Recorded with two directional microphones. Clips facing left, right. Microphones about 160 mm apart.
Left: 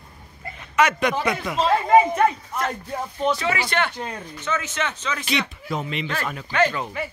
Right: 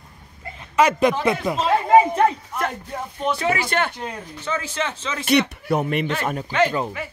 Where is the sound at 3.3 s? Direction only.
50° right (ahead or behind).